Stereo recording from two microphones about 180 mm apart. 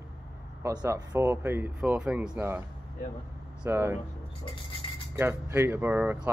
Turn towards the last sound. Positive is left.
turn(degrees=-10)  # may be behind; listen again after turning